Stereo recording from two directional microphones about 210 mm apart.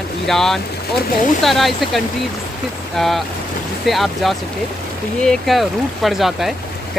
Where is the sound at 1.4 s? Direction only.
Centre (ahead or behind).